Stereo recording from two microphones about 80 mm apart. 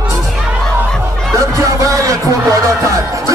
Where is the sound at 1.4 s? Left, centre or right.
Right.